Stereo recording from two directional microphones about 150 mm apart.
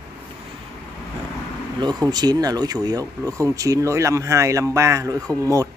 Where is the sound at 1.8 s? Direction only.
30° right (ahead or behind).